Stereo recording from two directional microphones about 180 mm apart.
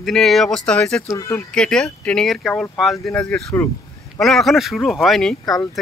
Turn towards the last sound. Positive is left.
turn(degrees=0)  # may be behind; listen again after turning